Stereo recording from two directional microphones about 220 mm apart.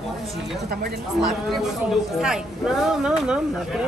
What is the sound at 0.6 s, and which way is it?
Speech, 45° right (ahead or behind).